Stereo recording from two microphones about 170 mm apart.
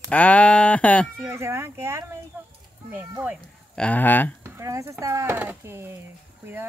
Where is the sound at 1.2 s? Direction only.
15° right (ahead or behind).